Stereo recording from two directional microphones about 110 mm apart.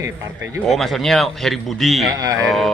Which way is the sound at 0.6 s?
Centre (ahead or behind).